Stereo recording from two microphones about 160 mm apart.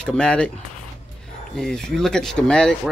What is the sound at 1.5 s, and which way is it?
Speech, 5° left (ahead or behind).